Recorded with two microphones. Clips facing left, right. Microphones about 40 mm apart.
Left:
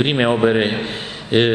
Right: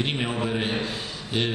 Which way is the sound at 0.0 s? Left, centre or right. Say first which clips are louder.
Left 11 dB; left.